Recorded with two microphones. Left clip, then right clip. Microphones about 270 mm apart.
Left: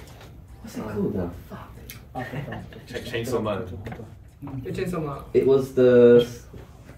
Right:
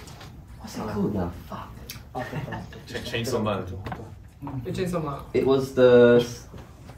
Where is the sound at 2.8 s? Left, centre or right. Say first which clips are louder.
Even; centre.